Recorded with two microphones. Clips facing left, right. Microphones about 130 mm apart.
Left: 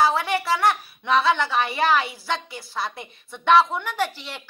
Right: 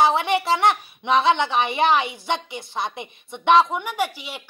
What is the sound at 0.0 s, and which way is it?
A woman's voice, 20° right (ahead or behind).